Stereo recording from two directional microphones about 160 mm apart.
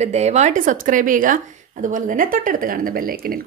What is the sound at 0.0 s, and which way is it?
A woman's voice, 45° right (ahead or behind).